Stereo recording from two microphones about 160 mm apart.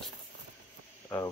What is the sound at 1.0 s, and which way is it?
Cricket, 20° left (ahead or behind).